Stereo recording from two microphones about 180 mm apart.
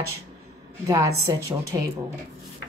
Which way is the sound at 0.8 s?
15° right (ahead or behind).